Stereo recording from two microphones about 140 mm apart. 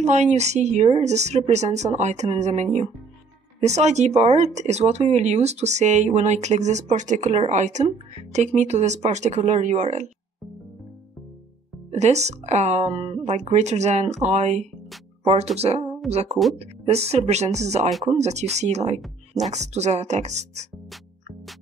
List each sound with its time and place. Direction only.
0.0 s a woman's voice: 55° right (ahead or behind)
11.9 s a woman's voice: 55° right (ahead or behind)